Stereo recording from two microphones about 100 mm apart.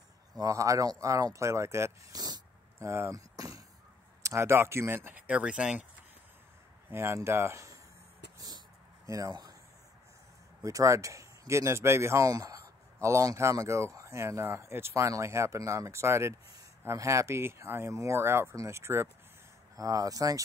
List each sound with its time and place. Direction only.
0.3 s speech: 35° right (ahead or behind)
2.1 s a sound: 40° right (ahead or behind)
2.9 s speech: 30° right (ahead or behind); by 5.9 s 10° right (ahead or behind)
6.9 s speech: 25° right (ahead or behind)
8.4 s a sound: 40° right (ahead or behind)
9.3 s speech: 45° right (ahead or behind)
10.6 s speech: 30° right (ahead or behind)